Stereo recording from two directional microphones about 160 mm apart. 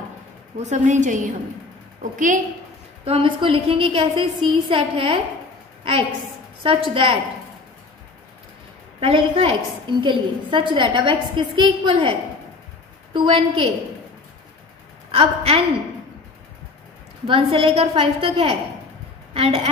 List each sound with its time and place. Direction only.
0.6 s a woman's voice: 45° right (ahead or behind)
3.1 s a woman's voice: 35° right (ahead or behind)
6.6 s a woman's voice: 35° right (ahead or behind)
9.0 s a woman's voice: 40° right (ahead or behind)
15.0 s a woman's voice: 35° right (ahead or behind)
17.3 s a woman's voice: 35° right (ahead or behind)